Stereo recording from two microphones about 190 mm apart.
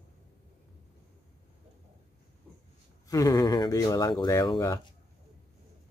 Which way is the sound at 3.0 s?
20° left (ahead or behind).